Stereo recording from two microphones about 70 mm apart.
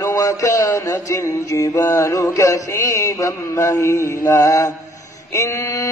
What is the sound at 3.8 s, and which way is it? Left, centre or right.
Mantra, left.